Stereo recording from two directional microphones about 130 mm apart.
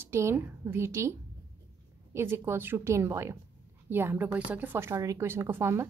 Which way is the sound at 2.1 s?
20° right (ahead or behind).